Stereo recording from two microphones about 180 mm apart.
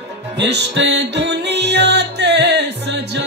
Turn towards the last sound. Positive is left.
turn(degrees=-70)  # may be behind; listen again after turning